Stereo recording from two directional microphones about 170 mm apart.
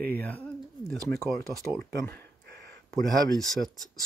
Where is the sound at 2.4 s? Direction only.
80° right.